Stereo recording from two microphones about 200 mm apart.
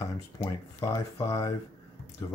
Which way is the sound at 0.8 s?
15° left (ahead or behind).